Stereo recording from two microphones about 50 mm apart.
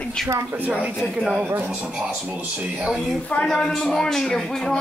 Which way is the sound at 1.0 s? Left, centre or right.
Centre.